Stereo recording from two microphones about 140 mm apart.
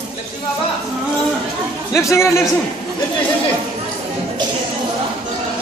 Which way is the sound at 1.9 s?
20° left (ahead or behind).